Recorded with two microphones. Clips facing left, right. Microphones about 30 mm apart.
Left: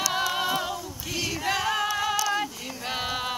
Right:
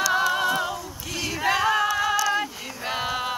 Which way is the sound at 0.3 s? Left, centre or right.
Centre.